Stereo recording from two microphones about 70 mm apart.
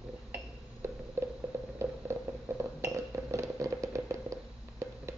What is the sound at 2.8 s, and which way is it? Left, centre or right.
Chink, right.